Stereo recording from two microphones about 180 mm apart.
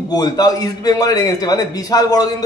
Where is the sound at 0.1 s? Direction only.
20° left (ahead or behind).